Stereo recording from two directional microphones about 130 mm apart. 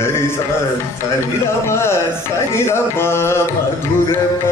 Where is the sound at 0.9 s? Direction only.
20° left (ahead or behind).